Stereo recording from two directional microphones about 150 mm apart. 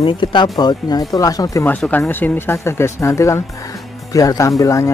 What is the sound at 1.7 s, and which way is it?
Speech, 10° left (ahead or behind).